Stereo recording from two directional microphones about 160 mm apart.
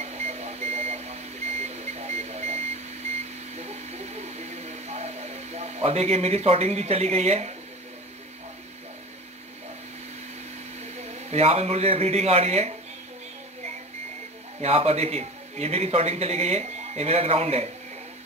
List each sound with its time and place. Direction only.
0.0 s reversing beeps: 45° right (ahead or behind)
10.8 s speech: 40° right (ahead or behind)
14.6 s a man's voice: 40° right (ahead or behind)